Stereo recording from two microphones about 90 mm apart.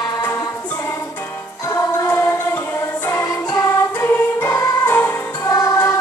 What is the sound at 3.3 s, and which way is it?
Music, 40° left (ahead or behind).